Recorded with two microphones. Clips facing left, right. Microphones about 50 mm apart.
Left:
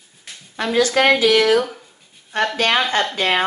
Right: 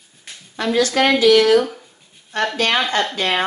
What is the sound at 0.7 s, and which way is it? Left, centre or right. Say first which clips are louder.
A woman's voice: left 1 dB; centre.